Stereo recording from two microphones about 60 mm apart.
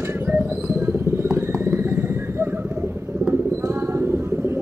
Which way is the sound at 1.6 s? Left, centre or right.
Right.